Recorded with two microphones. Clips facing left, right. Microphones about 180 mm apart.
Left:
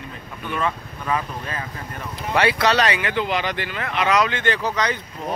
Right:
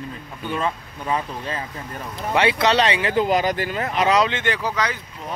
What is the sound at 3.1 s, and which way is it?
Speech, 40° right (ahead or behind).